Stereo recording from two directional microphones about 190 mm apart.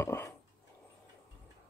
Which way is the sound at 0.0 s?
10° left (ahead or behind).